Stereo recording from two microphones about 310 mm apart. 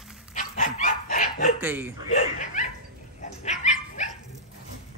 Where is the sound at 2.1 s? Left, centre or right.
Left.